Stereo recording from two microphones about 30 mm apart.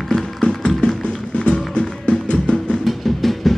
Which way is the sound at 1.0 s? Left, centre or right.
Left.